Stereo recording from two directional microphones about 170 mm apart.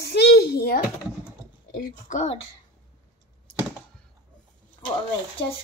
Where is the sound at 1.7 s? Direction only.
50° left (ahead or behind).